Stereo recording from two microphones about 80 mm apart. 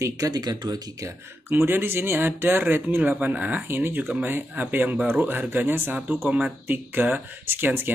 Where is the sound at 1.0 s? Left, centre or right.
Right.